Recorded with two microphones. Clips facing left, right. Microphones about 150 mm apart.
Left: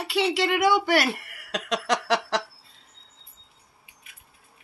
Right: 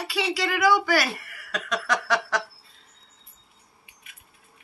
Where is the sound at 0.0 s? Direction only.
25° left (ahead or behind).